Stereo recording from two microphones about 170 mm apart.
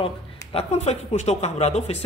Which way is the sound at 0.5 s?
35° left (ahead or behind).